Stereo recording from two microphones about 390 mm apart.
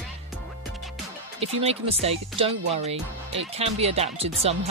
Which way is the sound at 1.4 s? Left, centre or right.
Centre.